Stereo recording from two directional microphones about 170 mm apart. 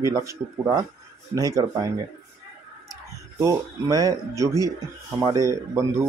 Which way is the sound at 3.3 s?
20° right (ahead or behind).